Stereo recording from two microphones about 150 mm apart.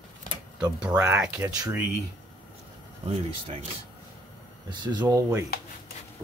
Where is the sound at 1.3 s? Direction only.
25° right (ahead or behind).